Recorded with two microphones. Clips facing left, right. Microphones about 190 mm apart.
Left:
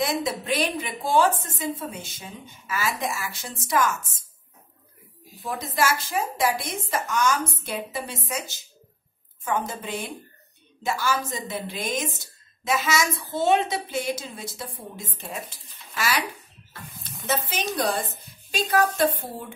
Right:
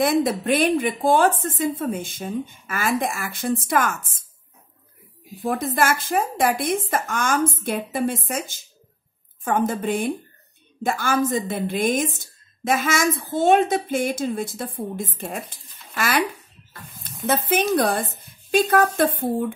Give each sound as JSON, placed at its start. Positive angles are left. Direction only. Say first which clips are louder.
{"t": 0.0, "sound": "a woman's voice", "louder": "right 7 dB", "side_deg": -55}
{"t": 5.4, "sound": "a woman's voice", "louder": "right 4 dB", "side_deg": -55}
{"t": 15.5, "sound": "a sound", "louder": "right 3 dB", "side_deg": -55}
{"t": 17.0, "sound": "a woman's voice", "louder": "right 5 dB", "side_deg": -55}
{"t": 18.2, "sound": "a sound", "louder": "right 9 dB", "side_deg": -55}
{"t": 18.9, "sound": "a woman's voice", "louder": "right 3 dB", "side_deg": -55}